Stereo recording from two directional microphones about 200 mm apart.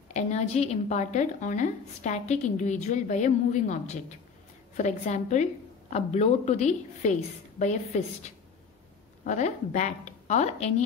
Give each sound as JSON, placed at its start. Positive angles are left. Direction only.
{"t": 0.1, "sound": "a woman's voice", "side_deg": 35}